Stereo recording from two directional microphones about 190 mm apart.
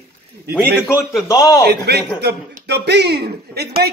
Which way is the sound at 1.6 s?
55° right (ahead or behind).